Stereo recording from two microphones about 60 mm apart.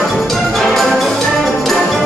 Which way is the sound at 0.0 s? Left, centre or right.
Centre.